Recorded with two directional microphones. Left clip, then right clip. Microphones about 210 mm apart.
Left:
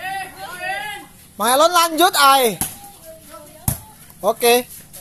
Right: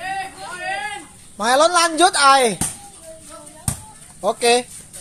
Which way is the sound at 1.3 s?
20° left (ahead or behind).